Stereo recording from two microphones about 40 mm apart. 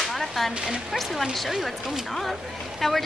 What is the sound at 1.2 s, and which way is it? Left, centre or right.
Speech, centre.